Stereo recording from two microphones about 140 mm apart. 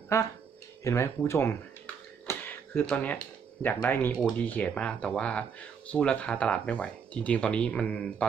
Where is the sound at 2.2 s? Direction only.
15° left (ahead or behind).